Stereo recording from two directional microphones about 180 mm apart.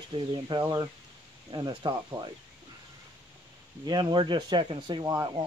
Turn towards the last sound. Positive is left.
turn(degrees=-20)  # may be behind; listen again after turning